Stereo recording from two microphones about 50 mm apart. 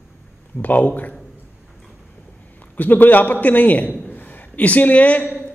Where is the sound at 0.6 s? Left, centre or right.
Left.